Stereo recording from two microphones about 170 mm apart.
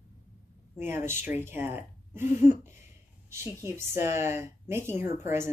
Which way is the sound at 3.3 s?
15° right (ahead or behind).